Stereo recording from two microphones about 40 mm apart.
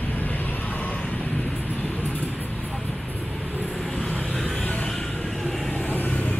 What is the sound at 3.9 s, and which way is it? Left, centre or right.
Vehicle, left.